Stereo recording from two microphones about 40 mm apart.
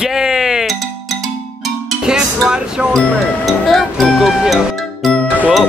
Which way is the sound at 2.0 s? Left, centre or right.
Right.